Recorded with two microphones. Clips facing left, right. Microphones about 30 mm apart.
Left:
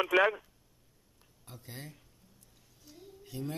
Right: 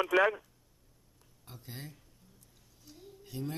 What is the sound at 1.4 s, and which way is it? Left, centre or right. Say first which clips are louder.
Speech: even; centre.